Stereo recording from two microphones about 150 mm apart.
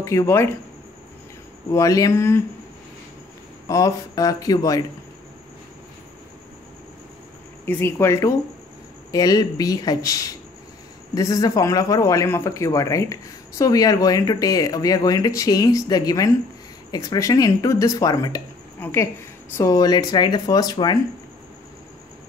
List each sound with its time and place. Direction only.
0.0 s speech: 20° left (ahead or behind)
1.7 s speech: 20° left (ahead or behind)
3.6 s speech: 25° left (ahead or behind)
7.6 s a woman's voice: 15° left (ahead or behind)